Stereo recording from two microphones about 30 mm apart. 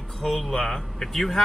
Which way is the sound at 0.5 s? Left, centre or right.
Centre.